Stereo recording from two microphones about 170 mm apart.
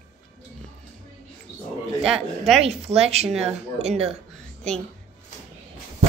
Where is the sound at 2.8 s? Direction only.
40° right (ahead or behind).